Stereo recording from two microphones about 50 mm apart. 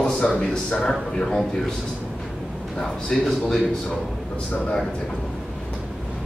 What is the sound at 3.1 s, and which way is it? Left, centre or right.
Speech, centre.